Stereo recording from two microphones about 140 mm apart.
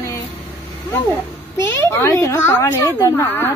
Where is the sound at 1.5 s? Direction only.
20° left (ahead or behind).